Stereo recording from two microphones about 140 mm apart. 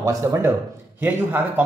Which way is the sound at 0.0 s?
20° right (ahead or behind).